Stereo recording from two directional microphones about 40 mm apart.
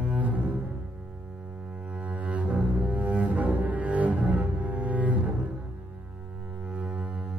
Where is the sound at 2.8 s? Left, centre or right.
Right.